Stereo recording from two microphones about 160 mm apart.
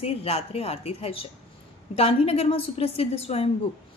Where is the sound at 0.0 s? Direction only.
40° left (ahead or behind).